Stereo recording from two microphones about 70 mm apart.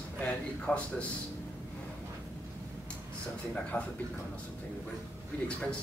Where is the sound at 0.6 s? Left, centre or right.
Centre.